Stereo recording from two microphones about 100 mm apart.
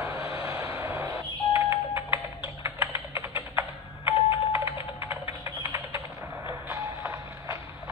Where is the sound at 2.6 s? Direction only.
30° right (ahead or behind).